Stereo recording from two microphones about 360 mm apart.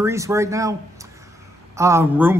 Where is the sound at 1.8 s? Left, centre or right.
Centre.